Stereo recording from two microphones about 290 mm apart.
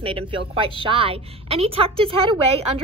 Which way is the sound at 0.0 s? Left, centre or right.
Centre.